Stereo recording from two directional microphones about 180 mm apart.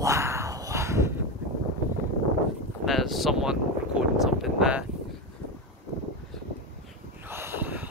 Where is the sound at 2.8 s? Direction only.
Centre (ahead or behind).